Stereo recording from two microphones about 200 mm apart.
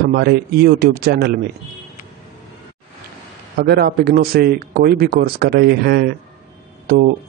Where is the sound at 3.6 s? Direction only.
55° right (ahead or behind).